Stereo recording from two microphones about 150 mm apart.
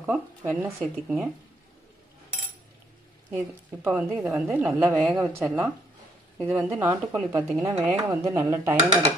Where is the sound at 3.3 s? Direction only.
15° right (ahead or behind).